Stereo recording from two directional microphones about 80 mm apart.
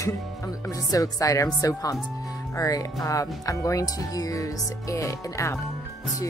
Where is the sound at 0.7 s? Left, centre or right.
Left.